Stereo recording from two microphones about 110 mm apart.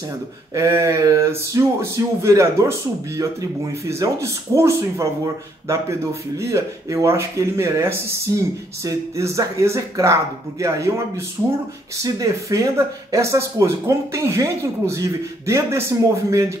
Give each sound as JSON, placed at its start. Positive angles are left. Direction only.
{"t": 0.6, "sound": "speech", "side_deg": -25}